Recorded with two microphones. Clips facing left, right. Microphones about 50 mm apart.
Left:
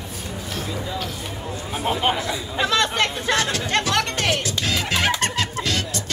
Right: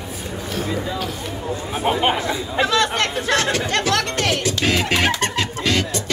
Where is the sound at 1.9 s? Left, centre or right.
Right.